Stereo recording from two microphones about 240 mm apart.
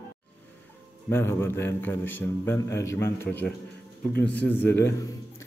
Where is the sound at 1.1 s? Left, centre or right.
Centre.